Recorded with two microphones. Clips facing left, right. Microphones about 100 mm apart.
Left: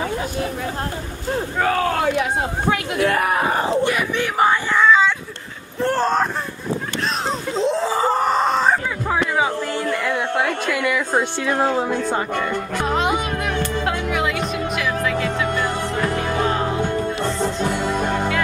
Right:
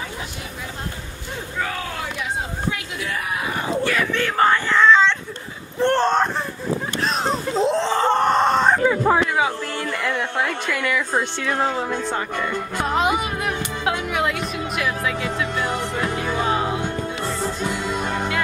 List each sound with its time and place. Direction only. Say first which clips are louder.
1.3 s a sound: left 7 dB; 50° left (ahead or behind)
3.8 s a sound: left 1 dB; 15° left (ahead or behind)
5.8 s whimper: right 1 dB; 5° left (ahead or behind)
7.2 s screaming: right 1 dB; centre (ahead or behind)
9.8 s speech: left 3 dB; 10° left (ahead or behind)
12.7 s music: even; centre (ahead or behind)